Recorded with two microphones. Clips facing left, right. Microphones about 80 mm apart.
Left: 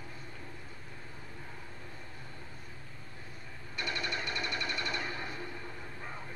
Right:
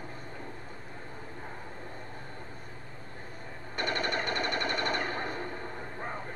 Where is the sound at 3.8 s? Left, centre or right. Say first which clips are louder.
Right 6 dB; right.